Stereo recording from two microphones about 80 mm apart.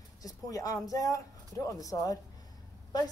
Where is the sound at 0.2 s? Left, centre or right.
Left.